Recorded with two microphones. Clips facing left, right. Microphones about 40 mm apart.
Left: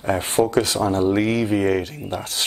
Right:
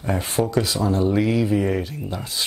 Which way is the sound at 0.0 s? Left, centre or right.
Left.